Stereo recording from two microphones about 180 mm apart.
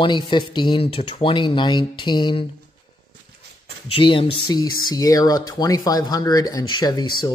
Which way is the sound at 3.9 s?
30° left (ahead or behind).